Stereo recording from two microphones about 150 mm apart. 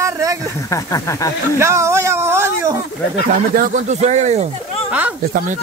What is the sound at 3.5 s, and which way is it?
Speech, 60° right (ahead or behind).